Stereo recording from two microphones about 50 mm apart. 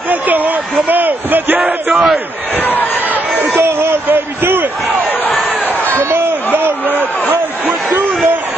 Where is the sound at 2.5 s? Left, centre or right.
Left.